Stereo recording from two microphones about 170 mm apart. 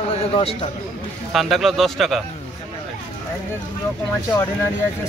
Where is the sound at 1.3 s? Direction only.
Centre (ahead or behind).